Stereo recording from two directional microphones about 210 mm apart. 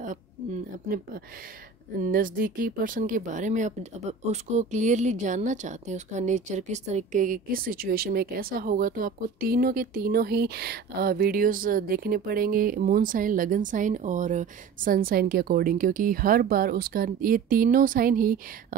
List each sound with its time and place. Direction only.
2.0 s speech: 40° right (ahead or behind)